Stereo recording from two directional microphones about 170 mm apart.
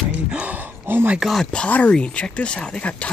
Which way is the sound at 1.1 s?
Centre (ahead or behind).